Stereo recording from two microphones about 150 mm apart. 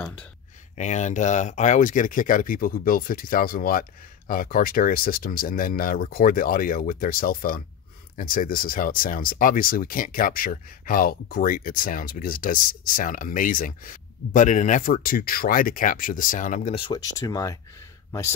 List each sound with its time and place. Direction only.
0.0 s a sound: 5° left (ahead or behind)
0.7 s speech: 50° left (ahead or behind)
16.7 s speech: 35° left (ahead or behind)
17.3 s speech: 20° left (ahead or behind)